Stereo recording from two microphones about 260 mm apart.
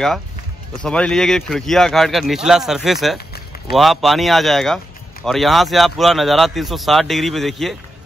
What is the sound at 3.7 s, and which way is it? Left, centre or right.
Speech, centre.